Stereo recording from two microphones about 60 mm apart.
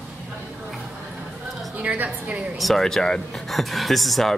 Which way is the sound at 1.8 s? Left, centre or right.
Right.